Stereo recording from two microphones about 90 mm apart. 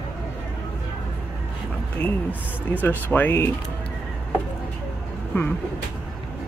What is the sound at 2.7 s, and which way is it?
Speech, 20° left (ahead or behind).